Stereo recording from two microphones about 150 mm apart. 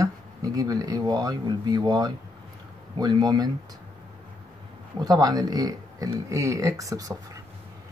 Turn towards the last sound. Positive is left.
turn(degrees=-25)  # may be behind; listen again after turning